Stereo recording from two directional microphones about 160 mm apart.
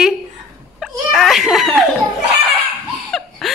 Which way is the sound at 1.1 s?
Centre (ahead or behind).